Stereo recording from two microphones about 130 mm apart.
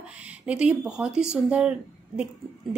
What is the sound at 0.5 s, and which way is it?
A woman's voice, 5° right (ahead or behind).